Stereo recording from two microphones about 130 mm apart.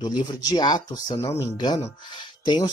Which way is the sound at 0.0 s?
35° left (ahead or behind).